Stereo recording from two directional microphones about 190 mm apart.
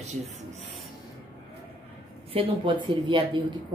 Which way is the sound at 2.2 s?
30° right (ahead or behind).